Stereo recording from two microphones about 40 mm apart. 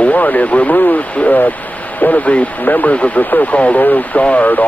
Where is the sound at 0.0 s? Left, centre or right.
Left.